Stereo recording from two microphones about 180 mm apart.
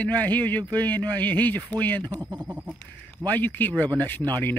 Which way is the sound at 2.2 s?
20° right (ahead or behind).